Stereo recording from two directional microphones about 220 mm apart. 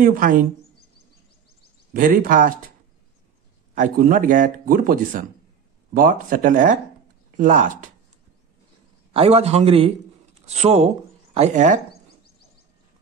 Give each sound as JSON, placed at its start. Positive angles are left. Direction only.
{"t": 0.0, "sound": "speech", "side_deg": -40}
{"t": 2.0, "sound": "speech", "side_deg": -35}
{"t": 3.7, "sound": "speech", "side_deg": -35}
{"t": 9.1, "sound": "a man's voice", "side_deg": -30}